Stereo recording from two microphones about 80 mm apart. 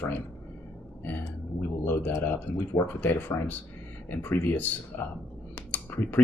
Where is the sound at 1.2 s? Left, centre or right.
Left.